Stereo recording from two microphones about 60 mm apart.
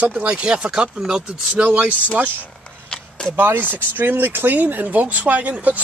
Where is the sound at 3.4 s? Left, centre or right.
Right.